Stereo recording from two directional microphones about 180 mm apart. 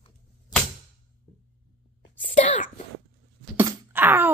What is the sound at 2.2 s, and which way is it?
Whispering, 45° left (ahead or behind).